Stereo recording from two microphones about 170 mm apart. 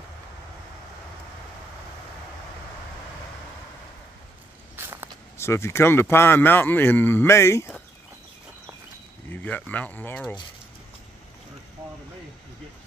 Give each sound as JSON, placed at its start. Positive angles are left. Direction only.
{"t": 4.7, "sound": "walk", "side_deg": -10}
{"t": 5.4, "sound": "speech", "side_deg": 15}
{"t": 9.3, "sound": "speech", "side_deg": 10}